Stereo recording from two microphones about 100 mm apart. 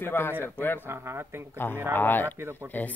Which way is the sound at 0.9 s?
25° right (ahead or behind).